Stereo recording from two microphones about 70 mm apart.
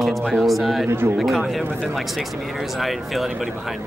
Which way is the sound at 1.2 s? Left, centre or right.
Centre.